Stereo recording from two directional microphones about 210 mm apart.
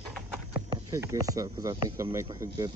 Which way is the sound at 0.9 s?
15° right (ahead or behind).